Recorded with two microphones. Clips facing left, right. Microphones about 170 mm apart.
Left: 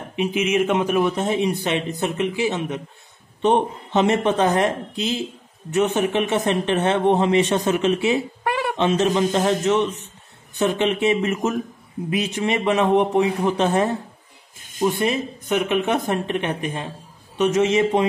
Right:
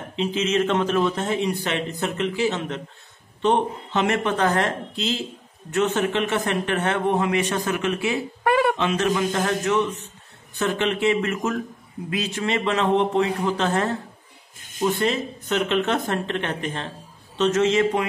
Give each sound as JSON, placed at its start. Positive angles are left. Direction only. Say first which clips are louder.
{"t": 0.1, "sound": "a man's voice", "louder": "left 2 dB", "side_deg": 15}
{"t": 8.5, "sound": "a sound", "louder": "right 6 dB", "side_deg": -55}
{"t": 8.7, "sound": "a man's voice", "louder": "left 3 dB", "side_deg": 20}